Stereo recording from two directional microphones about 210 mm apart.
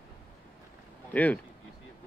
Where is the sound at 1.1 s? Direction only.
5° left (ahead or behind).